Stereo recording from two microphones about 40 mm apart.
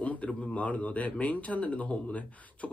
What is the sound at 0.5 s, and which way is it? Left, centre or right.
Speech, left.